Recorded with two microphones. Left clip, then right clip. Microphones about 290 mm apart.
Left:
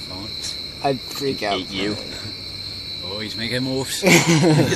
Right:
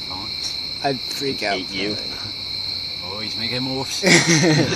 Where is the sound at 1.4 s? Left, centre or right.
Centre.